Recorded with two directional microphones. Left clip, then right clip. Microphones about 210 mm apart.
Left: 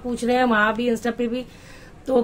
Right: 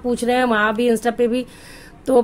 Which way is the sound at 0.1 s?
35° right (ahead or behind).